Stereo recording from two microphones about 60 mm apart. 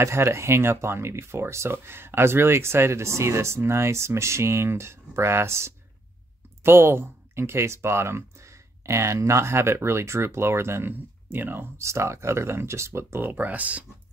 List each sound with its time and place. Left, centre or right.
0.0 s speech: right
10.9 s speech: right
11.8 s speech: right
13.3 s speech: right